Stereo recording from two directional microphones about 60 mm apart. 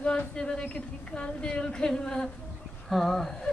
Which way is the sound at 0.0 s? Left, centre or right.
Centre.